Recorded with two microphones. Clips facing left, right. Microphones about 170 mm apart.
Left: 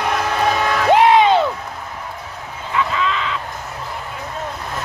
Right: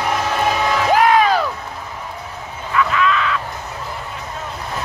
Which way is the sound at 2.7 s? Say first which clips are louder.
Right 3 dB; 25° left (ahead or behind).